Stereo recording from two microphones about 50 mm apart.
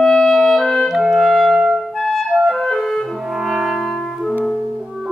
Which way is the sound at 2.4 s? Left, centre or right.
Centre.